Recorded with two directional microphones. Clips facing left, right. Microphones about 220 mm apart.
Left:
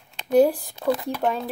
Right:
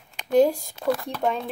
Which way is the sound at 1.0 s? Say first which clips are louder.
Left 1 dB; 5° left (ahead or behind).